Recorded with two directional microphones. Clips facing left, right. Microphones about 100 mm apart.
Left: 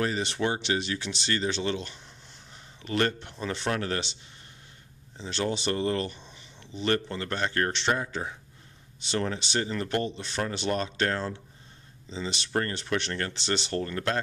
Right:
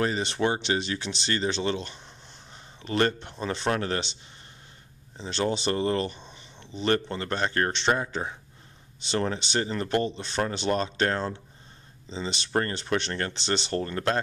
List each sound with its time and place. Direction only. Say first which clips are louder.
0.0 s speech: right 2 dB; 30° right (ahead or behind)